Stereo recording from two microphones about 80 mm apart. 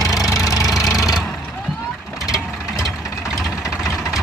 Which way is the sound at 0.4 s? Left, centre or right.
Left.